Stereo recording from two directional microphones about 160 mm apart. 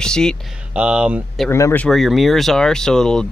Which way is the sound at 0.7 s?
5° right (ahead or behind).